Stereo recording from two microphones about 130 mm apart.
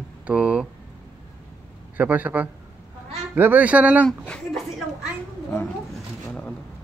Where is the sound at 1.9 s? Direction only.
10° right (ahead or behind).